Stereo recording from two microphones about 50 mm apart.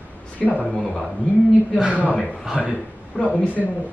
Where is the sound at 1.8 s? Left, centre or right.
Right.